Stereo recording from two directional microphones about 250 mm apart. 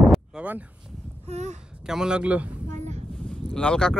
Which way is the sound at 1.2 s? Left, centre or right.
Right.